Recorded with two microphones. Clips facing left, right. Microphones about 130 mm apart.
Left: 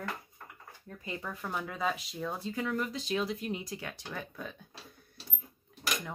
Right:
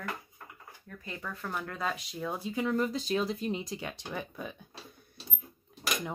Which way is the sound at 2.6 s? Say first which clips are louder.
Right 5 dB; 35° right (ahead or behind).